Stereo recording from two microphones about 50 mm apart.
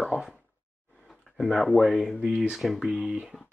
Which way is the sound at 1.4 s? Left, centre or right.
Centre.